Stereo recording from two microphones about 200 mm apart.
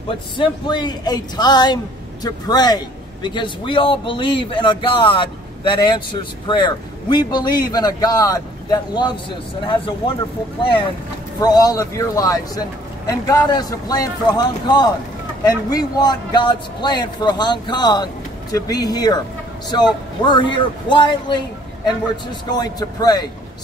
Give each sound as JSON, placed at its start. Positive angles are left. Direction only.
{"t": 0.4, "sound": "a man's voice", "side_deg": 20}
{"t": 11.4, "sound": "a man's voice", "side_deg": 20}